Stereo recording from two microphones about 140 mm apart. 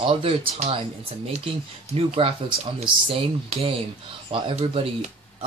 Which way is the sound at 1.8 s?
45° right (ahead or behind).